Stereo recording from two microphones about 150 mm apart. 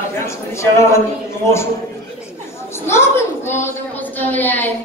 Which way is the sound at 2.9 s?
15° left (ahead or behind).